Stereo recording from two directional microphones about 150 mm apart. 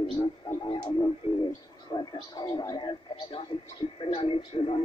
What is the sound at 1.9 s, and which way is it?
Speech, 30° left (ahead or behind).